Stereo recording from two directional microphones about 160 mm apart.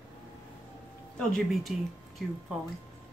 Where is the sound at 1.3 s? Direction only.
Centre (ahead or behind).